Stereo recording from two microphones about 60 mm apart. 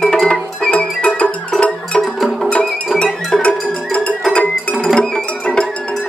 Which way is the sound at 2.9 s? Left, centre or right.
Centre.